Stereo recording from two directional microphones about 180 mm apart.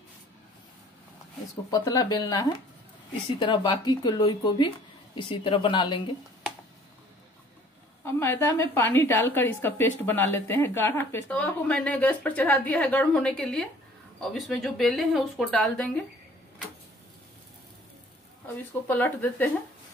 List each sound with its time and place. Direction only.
1.7 s speech: 20° left (ahead or behind)
8.0 s a woman's voice: 10° left (ahead or behind)
18.9 s a woman's voice: 10° left (ahead or behind)